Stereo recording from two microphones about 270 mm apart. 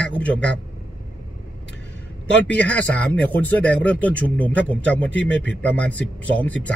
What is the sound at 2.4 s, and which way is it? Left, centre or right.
Speech, centre.